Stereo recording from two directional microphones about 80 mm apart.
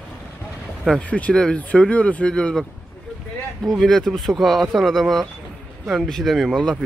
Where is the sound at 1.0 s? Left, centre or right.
Centre.